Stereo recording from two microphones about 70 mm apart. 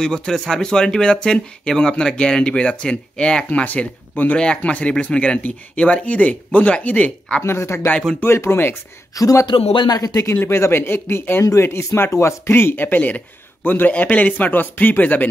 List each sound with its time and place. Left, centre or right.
0.0 s speech: centre
7.4 s speech: left
9.1 s a man's voice: left
10.3 s speech: left